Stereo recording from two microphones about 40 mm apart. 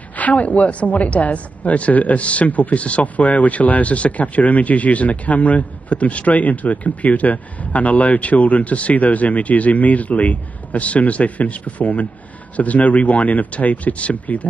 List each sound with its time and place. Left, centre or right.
0.2 s speech: left